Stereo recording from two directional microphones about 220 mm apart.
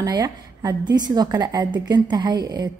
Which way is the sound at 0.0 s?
15° right (ahead or behind).